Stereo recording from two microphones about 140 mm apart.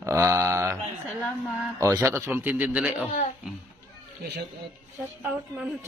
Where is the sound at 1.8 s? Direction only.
20° right (ahead or behind).